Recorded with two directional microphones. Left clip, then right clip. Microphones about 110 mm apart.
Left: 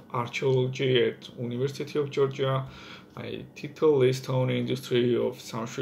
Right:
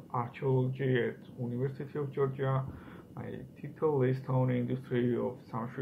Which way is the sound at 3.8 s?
25° left (ahead or behind).